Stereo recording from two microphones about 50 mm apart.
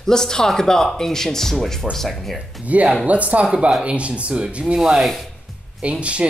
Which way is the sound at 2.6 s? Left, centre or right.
Right.